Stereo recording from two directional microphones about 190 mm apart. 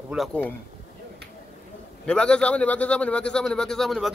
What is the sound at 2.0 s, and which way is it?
Speech, 5° left (ahead or behind).